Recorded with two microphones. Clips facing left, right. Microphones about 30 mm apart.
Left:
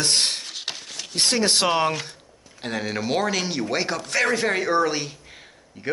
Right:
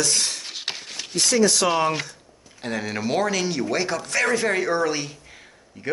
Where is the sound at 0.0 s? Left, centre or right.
Left.